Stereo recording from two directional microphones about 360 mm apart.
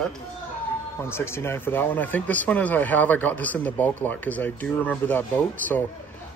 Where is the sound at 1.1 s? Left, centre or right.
Centre.